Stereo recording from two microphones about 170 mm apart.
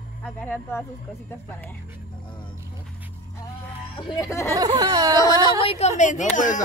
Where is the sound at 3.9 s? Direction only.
25° left (ahead or behind).